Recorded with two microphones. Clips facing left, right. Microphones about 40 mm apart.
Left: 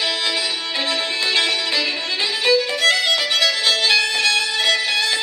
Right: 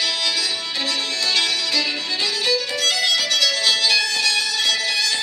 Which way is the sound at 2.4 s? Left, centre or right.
Left.